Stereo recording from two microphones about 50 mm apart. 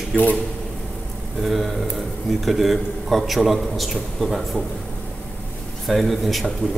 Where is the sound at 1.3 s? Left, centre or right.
Centre.